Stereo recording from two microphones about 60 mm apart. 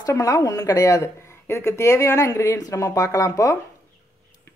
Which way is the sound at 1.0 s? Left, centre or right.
Left.